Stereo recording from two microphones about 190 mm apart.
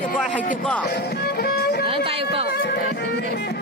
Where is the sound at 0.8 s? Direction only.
55° left (ahead or behind).